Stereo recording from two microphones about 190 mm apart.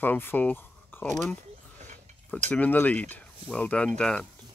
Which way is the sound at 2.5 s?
10° left (ahead or behind).